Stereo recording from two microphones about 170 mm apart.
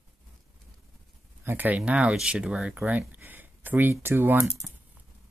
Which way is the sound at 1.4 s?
10° right (ahead or behind).